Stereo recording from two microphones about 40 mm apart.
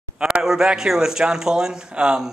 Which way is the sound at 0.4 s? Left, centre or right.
Centre.